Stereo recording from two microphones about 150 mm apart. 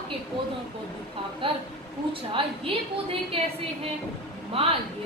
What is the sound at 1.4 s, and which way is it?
A woman's voice, 35° right (ahead or behind).